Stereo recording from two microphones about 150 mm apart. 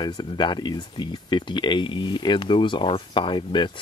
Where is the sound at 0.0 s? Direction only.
30° left (ahead or behind).